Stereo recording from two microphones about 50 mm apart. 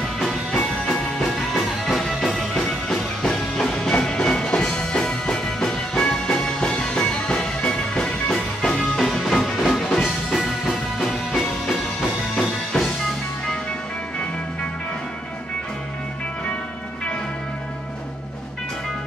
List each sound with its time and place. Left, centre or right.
0.0 s music: centre